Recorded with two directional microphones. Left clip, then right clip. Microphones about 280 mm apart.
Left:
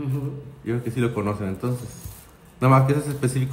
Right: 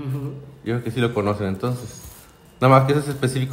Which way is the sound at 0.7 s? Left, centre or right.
Right.